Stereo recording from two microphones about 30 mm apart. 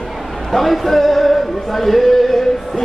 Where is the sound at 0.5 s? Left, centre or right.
Centre.